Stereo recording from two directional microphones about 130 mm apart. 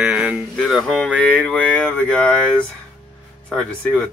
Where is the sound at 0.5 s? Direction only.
5° left (ahead or behind).